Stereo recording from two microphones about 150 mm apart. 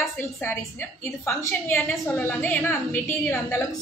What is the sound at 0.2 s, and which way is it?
A woman's voice, 15° left (ahead or behind).